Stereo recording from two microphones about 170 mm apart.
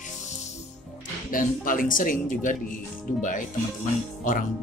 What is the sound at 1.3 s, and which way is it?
Speech, 55° left (ahead or behind).